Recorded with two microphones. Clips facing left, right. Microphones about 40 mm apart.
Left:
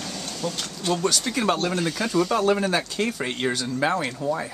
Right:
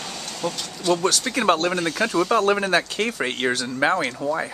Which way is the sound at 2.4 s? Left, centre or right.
Right.